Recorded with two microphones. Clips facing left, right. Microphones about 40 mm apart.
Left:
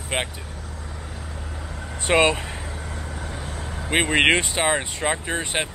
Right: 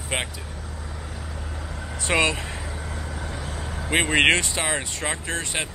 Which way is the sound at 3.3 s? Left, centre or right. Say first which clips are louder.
Even; centre.